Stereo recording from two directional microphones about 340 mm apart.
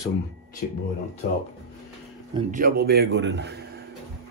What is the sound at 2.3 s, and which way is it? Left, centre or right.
A man's voice, right.